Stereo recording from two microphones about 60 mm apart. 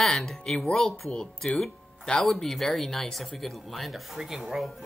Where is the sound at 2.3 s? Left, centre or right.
Centre.